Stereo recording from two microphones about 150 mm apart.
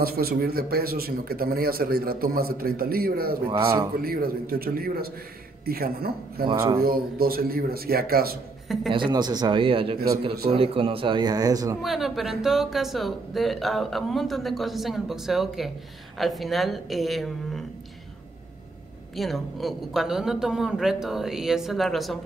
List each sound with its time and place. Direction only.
0.0 s a man's voice: 90° right
3.4 s speech: 35° right (ahead or behind)
4.0 s a man's voice: 80° right
8.9 s speech: 30° right (ahead or behind)
11.8 s speech: centre (ahead or behind)
19.1 s speech: centre (ahead or behind)